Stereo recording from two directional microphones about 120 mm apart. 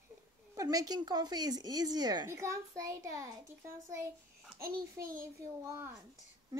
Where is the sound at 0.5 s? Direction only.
30° right (ahead or behind).